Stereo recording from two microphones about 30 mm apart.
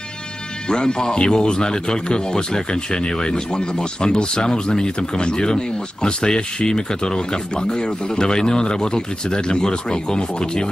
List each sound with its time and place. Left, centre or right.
0.7 s speech: left